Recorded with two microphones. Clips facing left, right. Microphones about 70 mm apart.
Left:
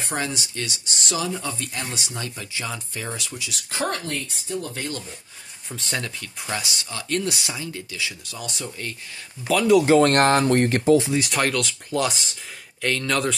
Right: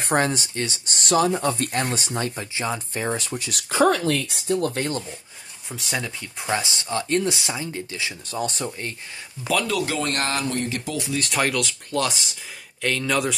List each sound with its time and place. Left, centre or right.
0.0 s speech: right
4.1 s speech: right
5.7 s speech: centre
6.2 s speech: right
9.7 s speech: left
9.9 s speech: left
10.9 s speech: left
11.1 s speech: centre